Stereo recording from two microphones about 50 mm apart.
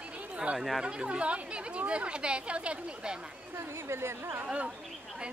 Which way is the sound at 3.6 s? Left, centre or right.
Right.